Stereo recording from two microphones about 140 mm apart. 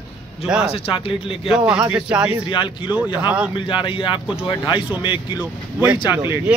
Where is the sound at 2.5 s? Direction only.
35° left (ahead or behind).